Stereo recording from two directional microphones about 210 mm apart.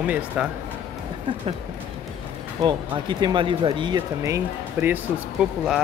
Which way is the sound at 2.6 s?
20° right (ahead or behind).